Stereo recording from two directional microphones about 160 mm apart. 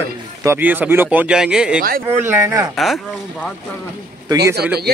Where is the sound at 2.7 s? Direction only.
Centre (ahead or behind).